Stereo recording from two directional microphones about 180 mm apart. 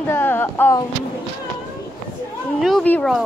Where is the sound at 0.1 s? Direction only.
10° left (ahead or behind).